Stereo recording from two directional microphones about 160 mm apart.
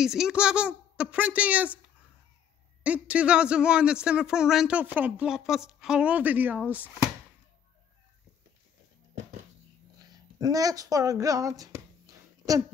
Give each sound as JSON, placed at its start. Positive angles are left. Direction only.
{"t": 0.0, "sound": "a man's voice", "side_deg": -5}
{"t": 2.8, "sound": "a man's voice", "side_deg": -10}
{"t": 9.9, "sound": "speech", "side_deg": -25}